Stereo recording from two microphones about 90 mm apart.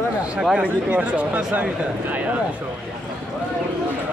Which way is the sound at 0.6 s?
15° right (ahead or behind).